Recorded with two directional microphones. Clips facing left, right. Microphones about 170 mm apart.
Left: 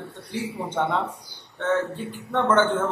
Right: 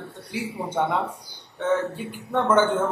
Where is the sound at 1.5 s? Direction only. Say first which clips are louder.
Right 1 dB; 10° right (ahead or behind).